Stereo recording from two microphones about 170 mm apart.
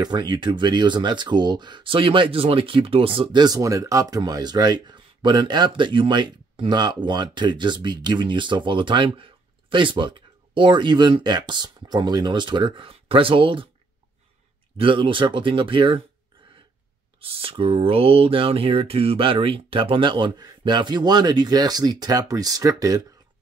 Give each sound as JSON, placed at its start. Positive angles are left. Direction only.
{"t": 0.0, "sound": "speech", "side_deg": -25}
{"t": 14.8, "sound": "speech", "side_deg": -30}
{"t": 17.2, "sound": "speech", "side_deg": -35}